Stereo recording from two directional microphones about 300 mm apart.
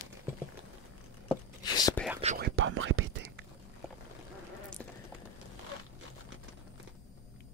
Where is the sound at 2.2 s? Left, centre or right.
Right.